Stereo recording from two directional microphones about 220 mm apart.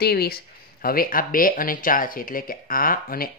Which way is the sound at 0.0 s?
45° left (ahead or behind).